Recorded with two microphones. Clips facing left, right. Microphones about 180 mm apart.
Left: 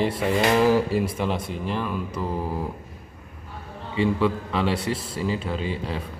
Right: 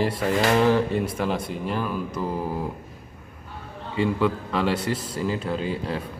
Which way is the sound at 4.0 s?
Centre (ahead or behind).